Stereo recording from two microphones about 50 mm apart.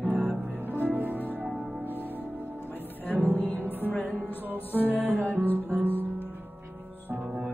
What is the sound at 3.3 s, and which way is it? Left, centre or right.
Music, left.